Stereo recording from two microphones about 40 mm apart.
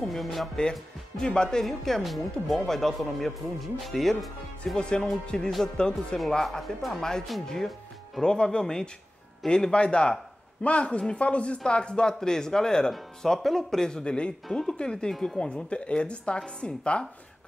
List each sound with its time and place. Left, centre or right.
0.1 s speech: centre
0.6 s speech: centre
1.7 s speech: centre
4.7 s speech: left
6.6 s speech: centre
7.0 s speech: centre